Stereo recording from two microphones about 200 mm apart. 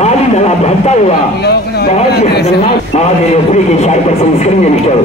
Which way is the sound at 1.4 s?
55° left (ahead or behind).